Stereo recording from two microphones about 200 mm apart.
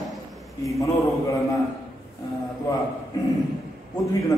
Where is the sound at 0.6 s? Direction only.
15° left (ahead or behind).